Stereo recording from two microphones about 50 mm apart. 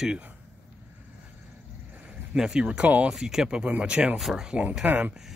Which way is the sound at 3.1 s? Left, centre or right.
Centre.